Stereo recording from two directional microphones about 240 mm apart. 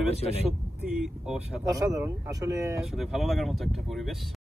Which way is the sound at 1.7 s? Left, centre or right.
Centre.